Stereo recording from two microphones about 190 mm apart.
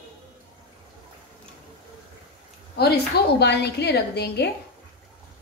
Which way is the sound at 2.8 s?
60° left (ahead or behind).